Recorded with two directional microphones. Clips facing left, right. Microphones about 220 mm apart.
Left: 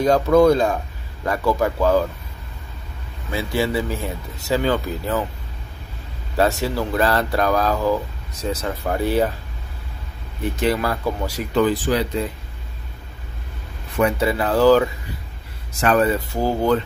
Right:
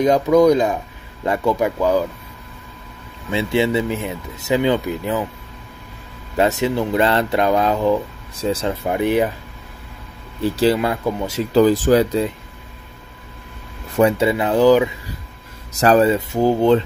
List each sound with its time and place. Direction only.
0.0 s speech: 15° right (ahead or behind)
3.3 s speech: 25° right (ahead or behind)
6.3 s speech: 20° right (ahead or behind)
8.9 s speech: 15° right (ahead or behind)
10.4 s speech: 30° right (ahead or behind)
11.5 s speech: 40° right (ahead or behind)
13.9 s speech: 25° right (ahead or behind)
15.7 s speech: 35° right (ahead or behind)